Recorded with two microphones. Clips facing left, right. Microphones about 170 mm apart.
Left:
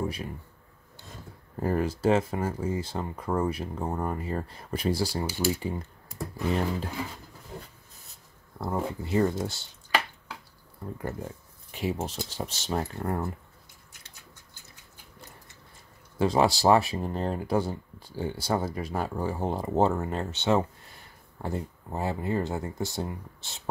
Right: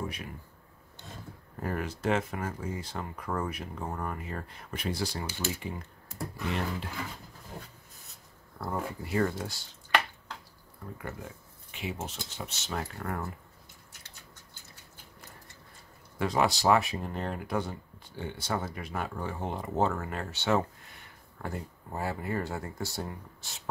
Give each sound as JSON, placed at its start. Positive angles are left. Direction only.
{"t": 1.6, "sound": "speech", "side_deg": 30}
{"t": 8.5, "sound": "speech", "side_deg": 20}
{"t": 11.0, "sound": "speech", "side_deg": 35}
{"t": 16.2, "sound": "speech", "side_deg": 30}